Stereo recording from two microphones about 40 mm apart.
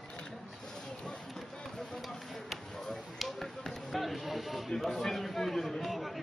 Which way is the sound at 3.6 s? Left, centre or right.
Centre.